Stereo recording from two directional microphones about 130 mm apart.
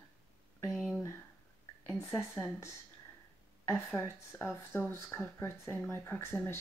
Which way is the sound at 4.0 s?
15° left (ahead or behind).